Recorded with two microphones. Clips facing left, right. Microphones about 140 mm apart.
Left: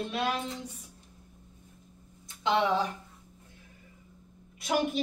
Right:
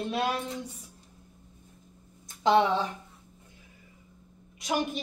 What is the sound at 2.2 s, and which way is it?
Speech, 35° right (ahead or behind).